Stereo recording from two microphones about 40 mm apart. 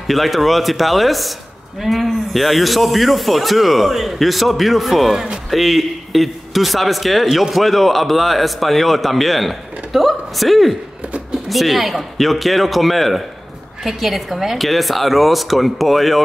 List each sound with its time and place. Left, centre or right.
0.0 s a man's voice: centre
5.1 s speech: centre
5.5 s a man's voice: centre